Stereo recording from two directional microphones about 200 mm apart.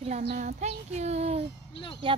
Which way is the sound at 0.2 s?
45° right (ahead or behind).